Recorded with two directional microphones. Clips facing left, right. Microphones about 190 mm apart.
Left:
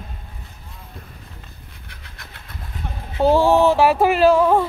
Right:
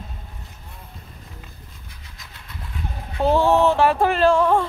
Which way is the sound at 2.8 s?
65° left (ahead or behind).